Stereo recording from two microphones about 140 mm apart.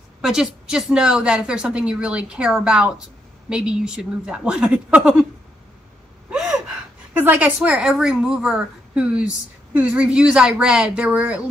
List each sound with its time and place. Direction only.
0.2 s a woman's voice: 5° right (ahead or behind)
6.3 s gasp: 5° right (ahead or behind)
7.2 s a woman's voice: 10° right (ahead or behind)